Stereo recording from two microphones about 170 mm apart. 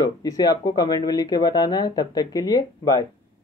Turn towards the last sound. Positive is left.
turn(degrees=20)  # may be behind; listen again after turning